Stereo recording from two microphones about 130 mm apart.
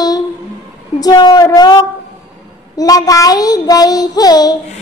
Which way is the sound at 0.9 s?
30° left (ahead or behind).